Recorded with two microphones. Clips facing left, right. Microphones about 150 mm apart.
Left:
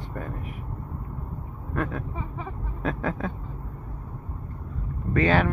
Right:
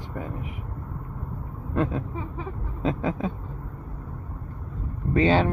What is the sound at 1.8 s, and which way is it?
Speech, 20° right (ahead or behind).